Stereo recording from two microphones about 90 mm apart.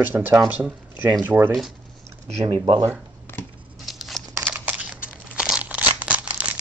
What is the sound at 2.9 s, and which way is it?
Shuffling cards, 25° left (ahead or behind).